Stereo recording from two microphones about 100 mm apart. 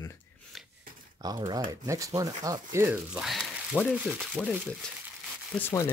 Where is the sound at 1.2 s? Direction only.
45° right (ahead or behind).